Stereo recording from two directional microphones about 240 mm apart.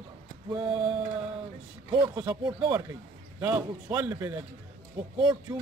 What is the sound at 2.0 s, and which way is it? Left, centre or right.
A man's voice, centre.